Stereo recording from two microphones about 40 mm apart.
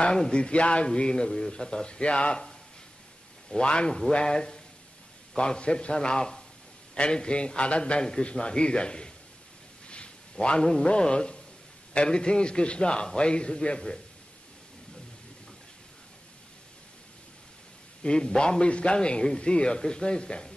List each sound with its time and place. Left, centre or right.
0.0 s a man's voice: left
3.5 s a man's voice: left
9.8 s a sound: left
10.4 s a man's voice: left
18.0 s a man's voice: left